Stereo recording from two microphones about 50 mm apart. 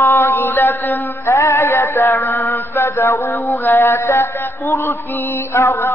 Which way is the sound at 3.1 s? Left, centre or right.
Left.